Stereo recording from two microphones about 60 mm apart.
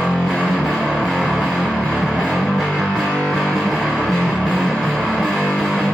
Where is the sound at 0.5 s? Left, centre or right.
Centre.